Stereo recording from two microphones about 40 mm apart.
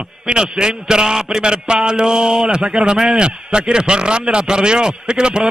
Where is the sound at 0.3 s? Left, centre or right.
Centre.